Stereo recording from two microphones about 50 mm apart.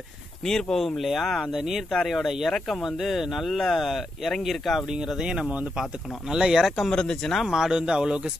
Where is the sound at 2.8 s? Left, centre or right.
Centre.